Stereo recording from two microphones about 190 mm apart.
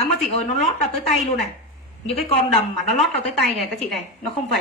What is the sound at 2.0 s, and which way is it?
A woman's voice, centre (ahead or behind).